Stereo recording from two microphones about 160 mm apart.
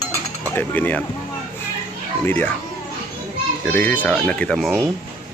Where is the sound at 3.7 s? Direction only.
10° left (ahead or behind).